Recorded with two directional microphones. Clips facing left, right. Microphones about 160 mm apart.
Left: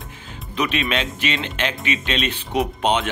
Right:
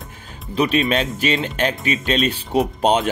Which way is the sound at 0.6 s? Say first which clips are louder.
Right 5 dB; 35° right (ahead or behind).